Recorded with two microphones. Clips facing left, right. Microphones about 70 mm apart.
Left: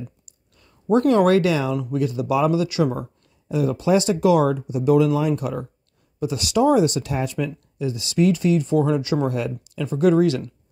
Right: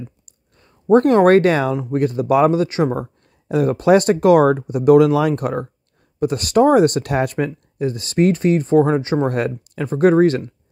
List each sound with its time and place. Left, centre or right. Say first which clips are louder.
0.6 s speech: right 6 dB; right
3.4 s speech: right 6 dB; right
5.4 s speech: right 5 dB; right
9.3 s speech: right 5 dB; right